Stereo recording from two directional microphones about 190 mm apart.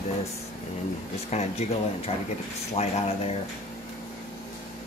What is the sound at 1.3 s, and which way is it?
Speech, 35° left (ahead or behind).